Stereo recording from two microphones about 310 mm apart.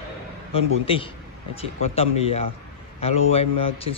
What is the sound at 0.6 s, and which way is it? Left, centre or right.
Speech, centre.